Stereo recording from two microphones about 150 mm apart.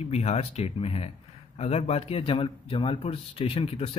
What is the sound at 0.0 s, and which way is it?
Speech, 45° left (ahead or behind).